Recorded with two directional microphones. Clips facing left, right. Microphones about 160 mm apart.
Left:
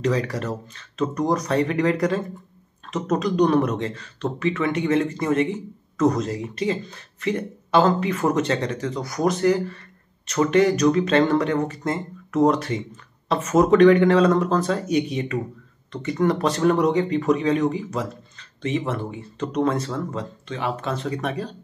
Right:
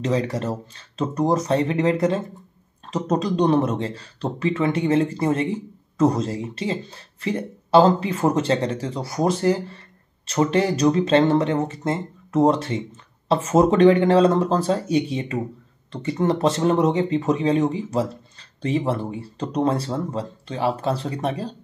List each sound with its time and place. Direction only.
0.0 s speech: 25° right (ahead or behind)